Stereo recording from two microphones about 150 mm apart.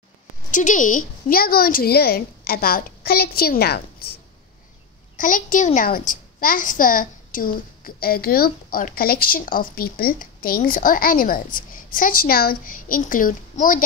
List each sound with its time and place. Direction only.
0.5 s a woman's voice: 60° left (ahead or behind); by 4.1 s 90° left
5.1 s a child's voice: 65° left (ahead or behind)